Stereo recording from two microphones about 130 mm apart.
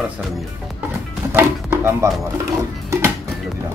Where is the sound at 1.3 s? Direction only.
15° right (ahead or behind).